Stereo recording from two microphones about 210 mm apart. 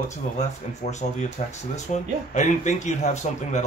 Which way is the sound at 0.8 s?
40° left (ahead or behind).